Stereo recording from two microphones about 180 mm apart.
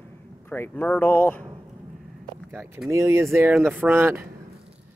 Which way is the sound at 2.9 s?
15° right (ahead or behind).